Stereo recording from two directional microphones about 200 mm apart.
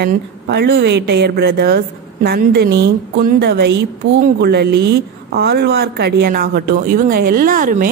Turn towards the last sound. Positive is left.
turn(degrees=-45)  # may be behind; listen again after turning